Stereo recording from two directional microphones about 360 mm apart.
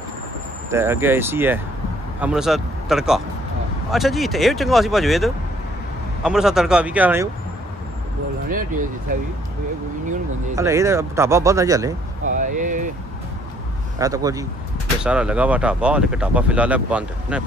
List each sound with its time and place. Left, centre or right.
0.7 s speech: centre
8.5 s speech: right
10.5 s speech: centre
12.3 s a sound: right
13.9 s speech: centre